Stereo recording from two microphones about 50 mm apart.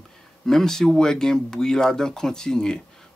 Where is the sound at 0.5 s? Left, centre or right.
Centre.